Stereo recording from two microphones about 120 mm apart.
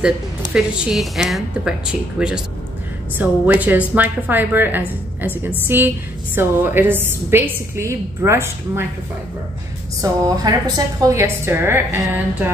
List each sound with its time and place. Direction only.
0.5 s a woman's voice: 5° right (ahead or behind)
10.0 s a woman's voice: 30° right (ahead or behind)